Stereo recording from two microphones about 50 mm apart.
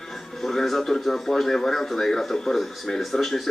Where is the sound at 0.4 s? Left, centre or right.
Centre.